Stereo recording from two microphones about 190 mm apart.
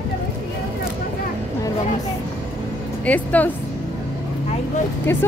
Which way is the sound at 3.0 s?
10° left (ahead or behind).